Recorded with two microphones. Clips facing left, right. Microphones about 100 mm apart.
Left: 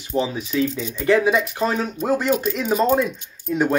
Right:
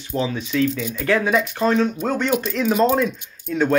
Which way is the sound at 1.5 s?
10° left (ahead or behind).